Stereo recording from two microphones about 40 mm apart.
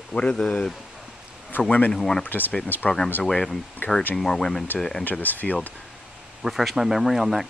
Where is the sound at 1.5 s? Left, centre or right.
Left.